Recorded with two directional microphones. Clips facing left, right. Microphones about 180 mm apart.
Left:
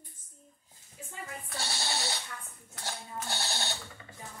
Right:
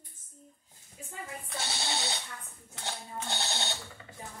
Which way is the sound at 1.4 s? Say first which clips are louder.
Even; 20° right (ahead or behind).